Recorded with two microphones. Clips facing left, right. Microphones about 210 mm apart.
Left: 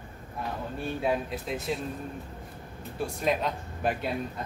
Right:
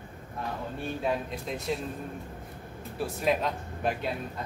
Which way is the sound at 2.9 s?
Centre (ahead or behind).